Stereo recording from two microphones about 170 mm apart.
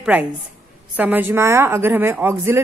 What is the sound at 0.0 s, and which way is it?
A woman's voice, 10° right (ahead or behind).